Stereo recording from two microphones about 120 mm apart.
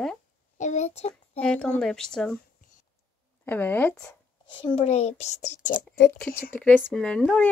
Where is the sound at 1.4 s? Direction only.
10° left (ahead or behind).